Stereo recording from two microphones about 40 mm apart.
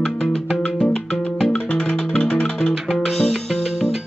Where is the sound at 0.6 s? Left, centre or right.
Left.